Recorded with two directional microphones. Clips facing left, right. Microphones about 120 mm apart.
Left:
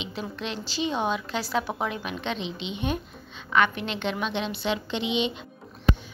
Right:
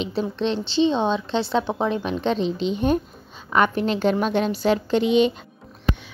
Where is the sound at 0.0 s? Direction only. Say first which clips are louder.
Right 9 dB; 30° right (ahead or behind).